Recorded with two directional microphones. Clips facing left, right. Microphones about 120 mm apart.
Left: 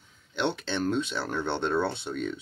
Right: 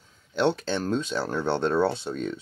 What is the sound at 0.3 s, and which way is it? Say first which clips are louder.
Speech: right 5 dB; 40° right (ahead or behind).